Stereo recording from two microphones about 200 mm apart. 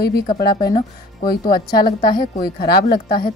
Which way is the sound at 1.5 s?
20° left (ahead or behind).